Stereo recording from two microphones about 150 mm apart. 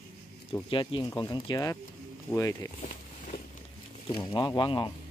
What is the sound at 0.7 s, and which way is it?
Speech, 35° left (ahead or behind).